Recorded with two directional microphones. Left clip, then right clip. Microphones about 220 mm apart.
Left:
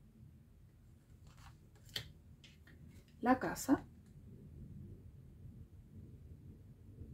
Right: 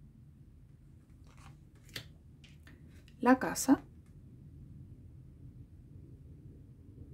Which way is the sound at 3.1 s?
40° right (ahead or behind).